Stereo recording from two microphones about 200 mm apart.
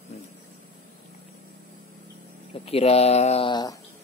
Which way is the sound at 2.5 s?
30° left (ahead or behind).